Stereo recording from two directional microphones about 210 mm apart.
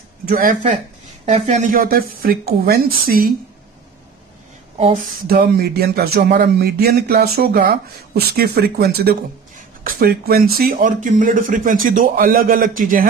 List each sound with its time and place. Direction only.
0.3 s speech: 40° right (ahead or behind)
5.2 s speech: 45° right (ahead or behind)